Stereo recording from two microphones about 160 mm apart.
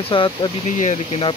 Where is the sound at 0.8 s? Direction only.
45° left (ahead or behind).